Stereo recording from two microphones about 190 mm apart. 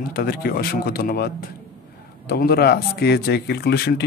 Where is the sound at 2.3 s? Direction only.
55° left (ahead or behind).